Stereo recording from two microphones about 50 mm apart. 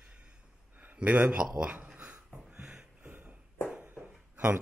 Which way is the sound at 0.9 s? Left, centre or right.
Right.